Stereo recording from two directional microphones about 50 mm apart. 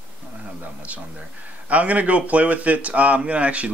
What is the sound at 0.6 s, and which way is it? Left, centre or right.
Speech, right.